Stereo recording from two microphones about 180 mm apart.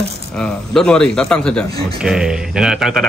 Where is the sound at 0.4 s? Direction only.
5° left (ahead or behind).